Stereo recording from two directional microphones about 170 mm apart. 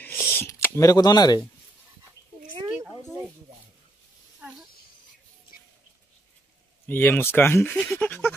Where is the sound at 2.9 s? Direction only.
15° right (ahead or behind).